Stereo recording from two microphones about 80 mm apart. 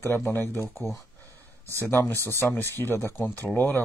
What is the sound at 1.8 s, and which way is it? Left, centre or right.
Speech, left.